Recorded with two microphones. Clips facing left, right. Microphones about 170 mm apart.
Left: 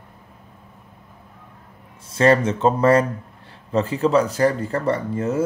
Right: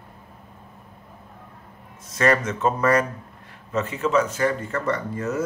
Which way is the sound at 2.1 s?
30° left (ahead or behind).